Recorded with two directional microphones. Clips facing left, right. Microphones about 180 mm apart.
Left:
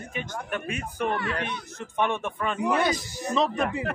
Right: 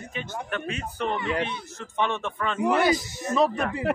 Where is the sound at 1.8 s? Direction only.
15° left (ahead or behind).